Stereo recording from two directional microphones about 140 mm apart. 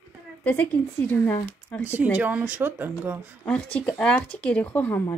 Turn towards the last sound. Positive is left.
turn(degrees=15)  # may be behind; listen again after turning